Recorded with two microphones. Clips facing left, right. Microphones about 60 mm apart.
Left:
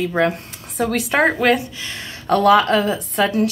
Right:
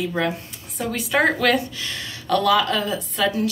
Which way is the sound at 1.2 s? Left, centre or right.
Left.